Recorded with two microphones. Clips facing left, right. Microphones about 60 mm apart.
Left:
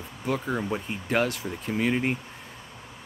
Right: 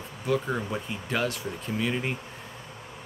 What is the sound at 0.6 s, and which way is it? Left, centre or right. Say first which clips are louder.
Speech: left 2 dB; centre.